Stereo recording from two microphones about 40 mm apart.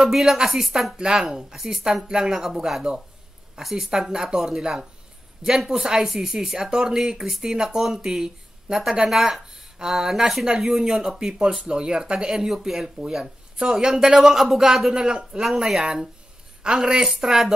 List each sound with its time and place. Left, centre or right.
0.0 s speech: centre
0.9 s speech: right
6.0 s speech: centre; by 15.4 s right
15.4 s speech: centre
16.6 s speech: centre